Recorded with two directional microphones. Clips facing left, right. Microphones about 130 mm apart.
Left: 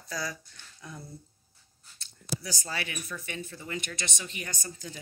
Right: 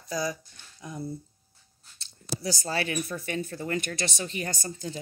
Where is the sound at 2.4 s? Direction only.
35° right (ahead or behind); by 3.9 s 50° right (ahead or behind).